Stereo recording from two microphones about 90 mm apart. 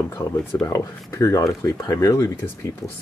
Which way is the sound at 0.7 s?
35° left (ahead or behind).